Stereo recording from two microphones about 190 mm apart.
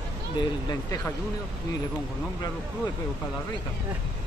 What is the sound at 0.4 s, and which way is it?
Speech, 20° left (ahead or behind).